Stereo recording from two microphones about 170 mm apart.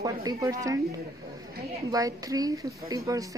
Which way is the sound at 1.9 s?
20° right (ahead or behind).